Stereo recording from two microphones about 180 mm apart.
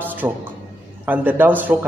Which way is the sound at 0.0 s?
10° right (ahead or behind).